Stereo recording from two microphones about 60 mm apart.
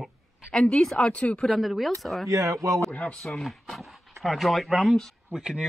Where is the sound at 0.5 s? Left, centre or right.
Centre.